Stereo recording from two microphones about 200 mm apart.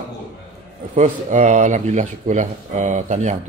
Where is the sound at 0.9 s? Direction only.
40° right (ahead or behind).